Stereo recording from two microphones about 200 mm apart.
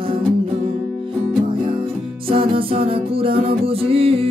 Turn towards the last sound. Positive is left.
turn(degrees=-30)  # may be behind; listen again after turning